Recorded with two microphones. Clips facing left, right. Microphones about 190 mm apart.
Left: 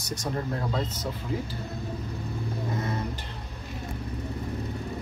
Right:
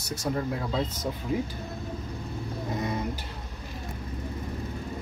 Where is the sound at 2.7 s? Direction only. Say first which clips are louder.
Right 2 dB; 15° right (ahead or behind).